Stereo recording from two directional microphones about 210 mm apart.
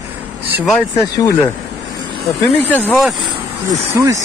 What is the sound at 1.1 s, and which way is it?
Speech, 15° left (ahead or behind).